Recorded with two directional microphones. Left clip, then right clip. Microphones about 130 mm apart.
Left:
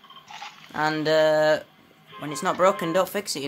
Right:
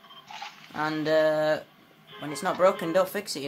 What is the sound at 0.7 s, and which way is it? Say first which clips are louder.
Speech: left 3 dB; 55° left (ahead or behind).